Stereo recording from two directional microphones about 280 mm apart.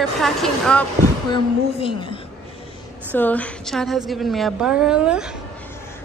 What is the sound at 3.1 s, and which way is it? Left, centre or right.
A woman's voice, centre.